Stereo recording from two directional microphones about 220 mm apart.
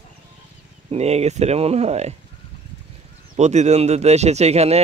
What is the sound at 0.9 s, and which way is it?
Speech, 30° right (ahead or behind).